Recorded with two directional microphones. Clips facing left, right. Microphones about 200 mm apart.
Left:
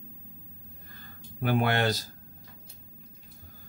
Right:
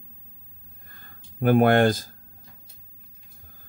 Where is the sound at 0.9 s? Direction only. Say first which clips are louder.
Right 5 dB; 50° right (ahead or behind).